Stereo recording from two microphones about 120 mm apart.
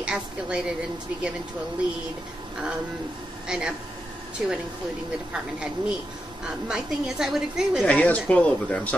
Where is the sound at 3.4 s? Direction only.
5° right (ahead or behind).